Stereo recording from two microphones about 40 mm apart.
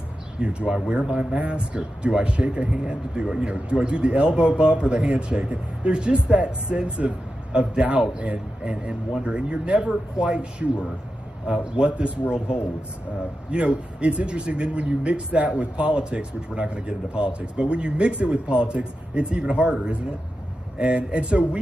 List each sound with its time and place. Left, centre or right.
0.4 s a man's voice: right